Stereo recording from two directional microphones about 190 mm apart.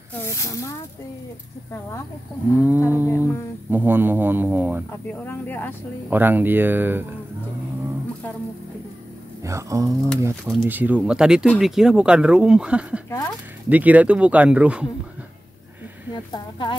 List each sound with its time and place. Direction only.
0.2 s speech: 15° left (ahead or behind)
2.5 s speech: 10° right (ahead or behind)
5.2 s speech: 10° left (ahead or behind)
6.0 s speech: 10° right (ahead or behind)
9.4 s speech: 15° right (ahead or behind)
10.4 s speech: 5° right (ahead or behind)
16.1 s speech: 25° left (ahead or behind)